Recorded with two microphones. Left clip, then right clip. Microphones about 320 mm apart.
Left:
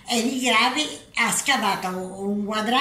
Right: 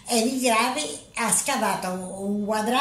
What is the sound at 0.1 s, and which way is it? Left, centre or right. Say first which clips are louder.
A woman's voice: left 1 dB; centre.